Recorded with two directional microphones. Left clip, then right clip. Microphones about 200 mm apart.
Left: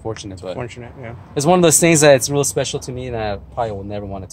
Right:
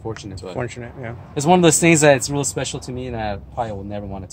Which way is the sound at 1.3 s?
40° left (ahead or behind).